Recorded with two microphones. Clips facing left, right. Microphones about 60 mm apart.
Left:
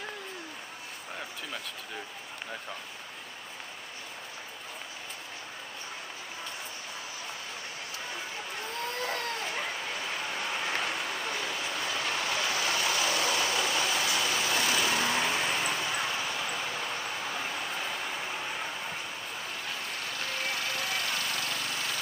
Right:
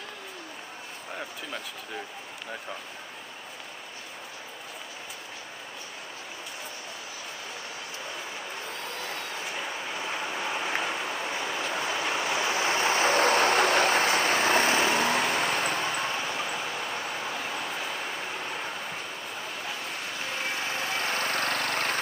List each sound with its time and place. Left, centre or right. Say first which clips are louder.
10.0 s train: right 4 dB; centre
11.6 s vehicle: right 3 dB; right
16.4 s vehicle: right 2 dB; centre
20.2 s vehicle: right 2 dB; right